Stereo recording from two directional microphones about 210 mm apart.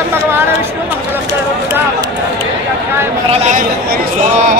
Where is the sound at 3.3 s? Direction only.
30° right (ahead or behind).